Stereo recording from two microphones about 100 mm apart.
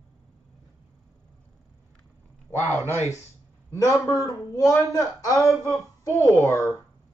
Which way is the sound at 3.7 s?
30° left (ahead or behind).